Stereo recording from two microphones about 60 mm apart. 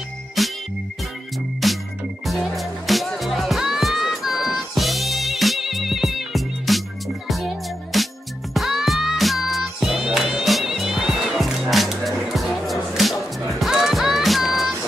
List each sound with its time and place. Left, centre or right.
0.4 s music: centre
1.6 s music: centre